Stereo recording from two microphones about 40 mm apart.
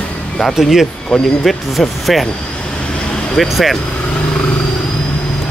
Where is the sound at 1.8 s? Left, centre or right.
Centre.